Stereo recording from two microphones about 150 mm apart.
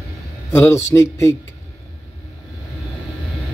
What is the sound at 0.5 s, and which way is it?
Speech, 20° left (ahead or behind).